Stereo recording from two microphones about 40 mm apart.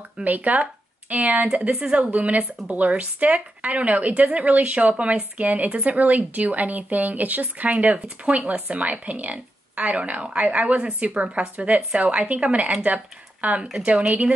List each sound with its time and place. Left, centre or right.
0.2 s speech: right
1.5 s speech: right
2.0 s a woman's voice: right